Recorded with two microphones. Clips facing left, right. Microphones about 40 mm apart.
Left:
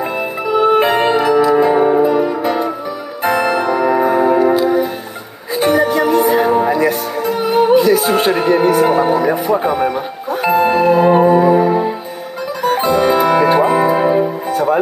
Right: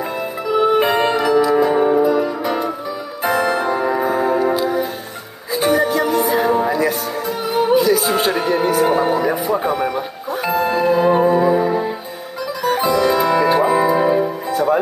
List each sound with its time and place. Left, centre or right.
0.7 s music: left
6.3 s music: left
6.7 s music: left
9.6 s speech: left
10.4 s music: left
11.2 s music: left